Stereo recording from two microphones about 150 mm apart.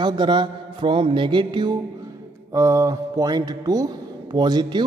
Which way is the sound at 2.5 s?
20° right (ahead or behind).